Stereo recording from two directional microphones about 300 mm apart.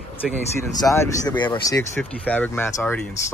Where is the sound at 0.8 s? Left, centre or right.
Centre.